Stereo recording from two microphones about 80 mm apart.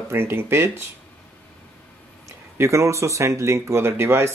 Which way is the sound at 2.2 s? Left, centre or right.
Right.